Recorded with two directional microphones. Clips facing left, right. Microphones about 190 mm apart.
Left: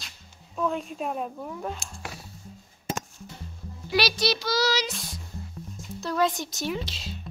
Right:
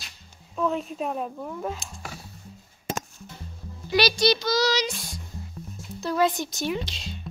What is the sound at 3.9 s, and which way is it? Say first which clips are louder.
Speech: right 4 dB; 5° left (ahead or behind).